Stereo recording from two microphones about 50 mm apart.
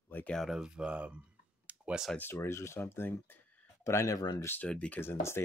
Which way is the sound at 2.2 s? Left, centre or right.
Left.